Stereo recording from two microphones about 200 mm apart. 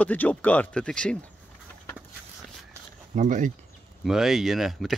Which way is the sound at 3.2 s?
40° right (ahead or behind).